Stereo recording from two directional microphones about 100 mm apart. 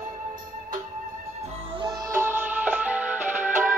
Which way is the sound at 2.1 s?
25° right (ahead or behind).